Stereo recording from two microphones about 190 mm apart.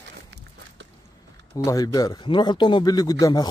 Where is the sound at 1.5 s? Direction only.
20° left (ahead or behind).